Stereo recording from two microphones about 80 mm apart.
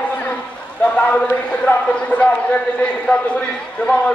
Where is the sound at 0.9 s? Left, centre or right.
Centre.